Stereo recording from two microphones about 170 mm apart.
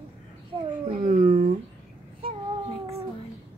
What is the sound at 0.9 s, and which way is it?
Dog, 50° right (ahead or behind).